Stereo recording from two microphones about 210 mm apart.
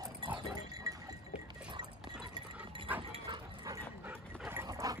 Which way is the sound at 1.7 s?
20° right (ahead or behind).